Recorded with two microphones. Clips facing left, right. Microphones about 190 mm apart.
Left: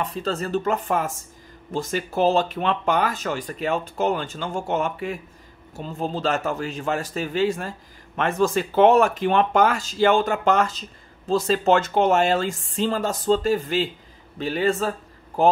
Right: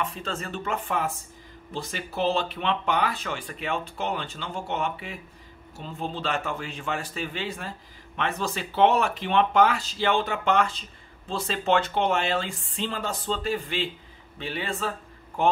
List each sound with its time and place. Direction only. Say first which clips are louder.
0.0 s a man's voice: left 5 dB; 35° left (ahead or behind)